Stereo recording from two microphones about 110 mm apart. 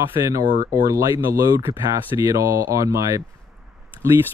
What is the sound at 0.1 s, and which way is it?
Speech, 25° right (ahead or behind).